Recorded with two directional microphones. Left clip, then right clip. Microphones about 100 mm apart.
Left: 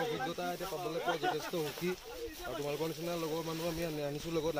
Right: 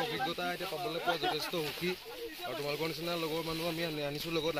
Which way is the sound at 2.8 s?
5° right (ahead or behind).